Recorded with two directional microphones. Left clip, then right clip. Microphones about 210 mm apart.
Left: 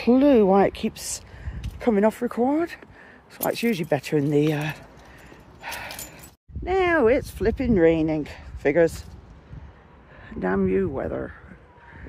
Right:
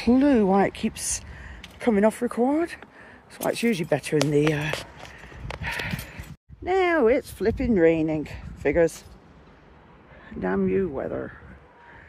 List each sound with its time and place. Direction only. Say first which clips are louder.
0.0 s speech: left 3 dB; 5° left (ahead or behind)
5.7 s dog: right 3 dB; 10° left (ahead or behind)
6.6 s speech: left 1 dB; 10° right (ahead or behind); by 8.9 s 5° left (ahead or behind)
10.4 s speech: left 1 dB; 15° left (ahead or behind)